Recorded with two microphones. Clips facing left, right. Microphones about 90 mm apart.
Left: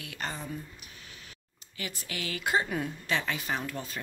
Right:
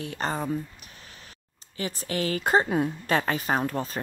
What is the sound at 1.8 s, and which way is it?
Speech, 35° right (ahead or behind).